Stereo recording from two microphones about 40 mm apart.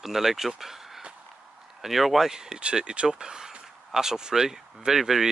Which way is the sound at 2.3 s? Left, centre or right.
Centre.